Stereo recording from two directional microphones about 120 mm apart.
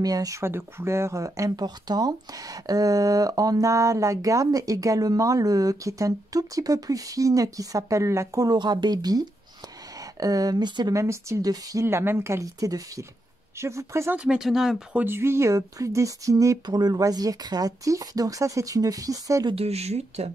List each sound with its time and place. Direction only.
0.0 s speech: 30° right (ahead or behind)
10.2 s speech: 30° right (ahead or behind)
14.1 s speech: 10° right (ahead or behind)
15.0 s speech: 20° right (ahead or behind)
19.5 s speech: 60° right (ahead or behind)